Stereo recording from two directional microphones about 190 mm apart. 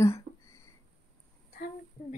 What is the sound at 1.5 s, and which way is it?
Speech, 45° left (ahead or behind).